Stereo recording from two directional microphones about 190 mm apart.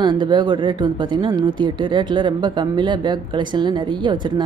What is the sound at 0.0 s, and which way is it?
Speech, 25° right (ahead or behind).